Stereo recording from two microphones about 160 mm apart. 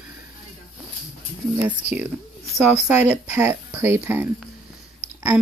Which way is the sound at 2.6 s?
10° right (ahead or behind).